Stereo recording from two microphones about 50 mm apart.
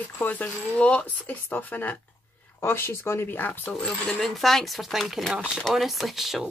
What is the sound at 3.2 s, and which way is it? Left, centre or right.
Speech, left.